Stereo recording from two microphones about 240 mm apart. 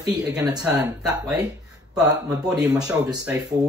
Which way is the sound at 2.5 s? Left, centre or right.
Centre.